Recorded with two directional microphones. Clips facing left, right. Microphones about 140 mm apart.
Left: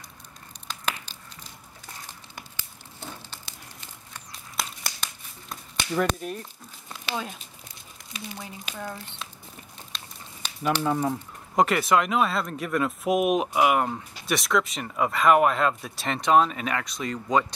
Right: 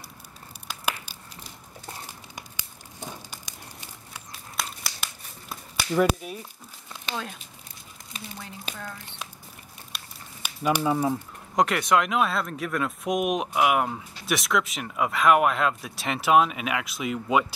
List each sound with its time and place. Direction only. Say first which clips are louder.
0.7 s a sound: right 1 dB; 10° right (ahead or behind)
2.0 s crumpling: right 1 dB; 15° right (ahead or behind)
4.3 s tearing: even; 5° right (ahead or behind)
8.7 s speech: left 8 dB; 15° left (ahead or behind)
9.0 s crumpling: even; 15° right (ahead or behind)
9.9 s a sound: even; 10° right (ahead or behind)
11.5 s speech: left 1 dB; centre (ahead or behind)